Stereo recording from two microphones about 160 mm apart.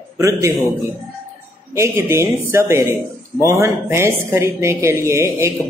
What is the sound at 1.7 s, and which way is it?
A man's voice, 15° right (ahead or behind).